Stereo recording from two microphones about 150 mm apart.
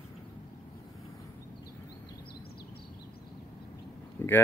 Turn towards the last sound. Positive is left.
turn(degrees=15)  # may be behind; listen again after turning